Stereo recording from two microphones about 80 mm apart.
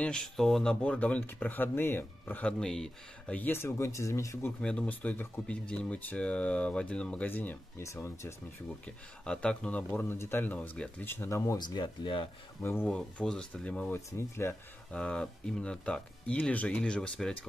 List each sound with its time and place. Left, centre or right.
0.0 s speech: centre
0.9 s speech: centre
2.6 s speech: centre
3.3 s speech: left
3.6 s speech: left
4.6 s speech: centre
7.8 s speech: left
8.8 s speech: centre
10.0 s speech: left
11.2 s speech: left
11.5 s speech: left
12.8 s speech: centre
14.1 s speech: left
14.9 s speech: centre